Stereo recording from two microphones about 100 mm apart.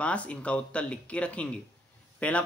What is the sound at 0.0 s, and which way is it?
Speech, 10° left (ahead or behind).